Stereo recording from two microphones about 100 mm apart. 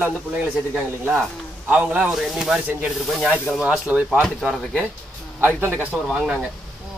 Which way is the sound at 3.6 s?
10° right (ahead or behind).